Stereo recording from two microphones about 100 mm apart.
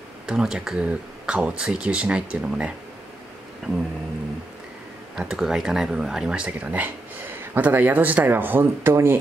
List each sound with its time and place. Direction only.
0.3 s speech: 5° right (ahead or behind)
5.1 s speech: 5° right (ahead or behind); by 9.2 s 20° right (ahead or behind)